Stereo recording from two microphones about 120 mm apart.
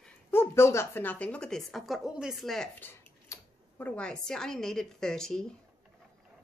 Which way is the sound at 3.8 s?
10° left (ahead or behind).